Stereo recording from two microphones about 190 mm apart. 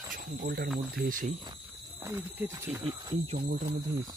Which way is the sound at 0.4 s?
55° right (ahead or behind).